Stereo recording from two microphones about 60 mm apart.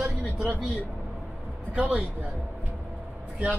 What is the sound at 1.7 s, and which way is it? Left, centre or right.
Speech, right.